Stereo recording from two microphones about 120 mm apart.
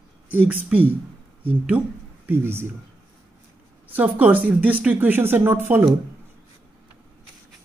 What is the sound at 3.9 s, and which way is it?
Speech, 10° right (ahead or behind).